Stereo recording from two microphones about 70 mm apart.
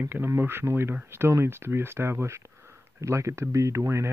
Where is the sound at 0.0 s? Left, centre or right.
Right.